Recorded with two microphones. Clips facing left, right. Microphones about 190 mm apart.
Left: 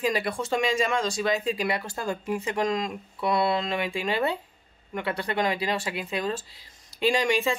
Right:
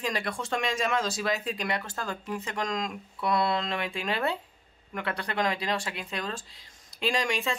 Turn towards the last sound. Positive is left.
turn(degrees=0)  # may be behind; listen again after turning